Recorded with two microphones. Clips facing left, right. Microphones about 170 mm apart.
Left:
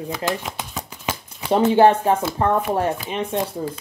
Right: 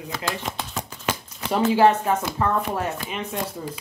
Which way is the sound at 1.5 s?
30° left (ahead or behind).